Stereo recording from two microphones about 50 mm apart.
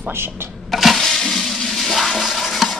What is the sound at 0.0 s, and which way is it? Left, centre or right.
Speech, right.